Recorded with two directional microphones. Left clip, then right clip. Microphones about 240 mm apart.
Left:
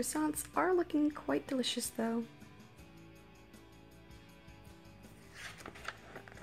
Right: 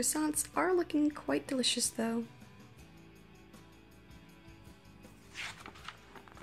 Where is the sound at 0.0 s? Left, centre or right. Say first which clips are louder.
Right 2 dB; centre.